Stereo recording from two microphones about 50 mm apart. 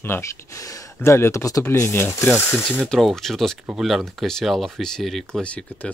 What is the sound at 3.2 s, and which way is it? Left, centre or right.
Speech, centre.